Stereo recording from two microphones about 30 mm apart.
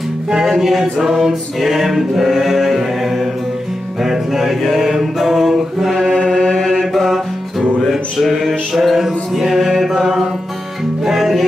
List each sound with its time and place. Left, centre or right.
0.5 s a capella: centre
4.0 s mantra: centre
6.1 s chant: centre
6.5 s mantra: centre
9.0 s chant: centre
11.1 s music: centre